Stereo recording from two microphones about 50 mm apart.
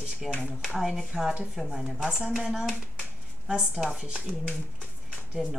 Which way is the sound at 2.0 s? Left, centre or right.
Centre.